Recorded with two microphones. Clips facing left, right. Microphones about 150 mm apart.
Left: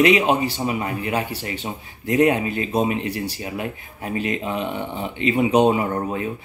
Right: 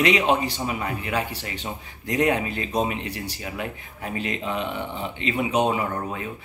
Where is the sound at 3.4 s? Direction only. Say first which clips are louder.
Left 3 dB; 25° left (ahead or behind).